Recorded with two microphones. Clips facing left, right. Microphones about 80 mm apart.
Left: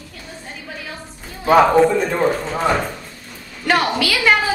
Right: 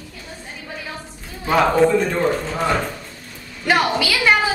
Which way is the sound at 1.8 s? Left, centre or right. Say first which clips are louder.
Even; centre.